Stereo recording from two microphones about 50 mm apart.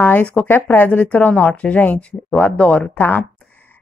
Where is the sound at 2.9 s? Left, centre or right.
Left.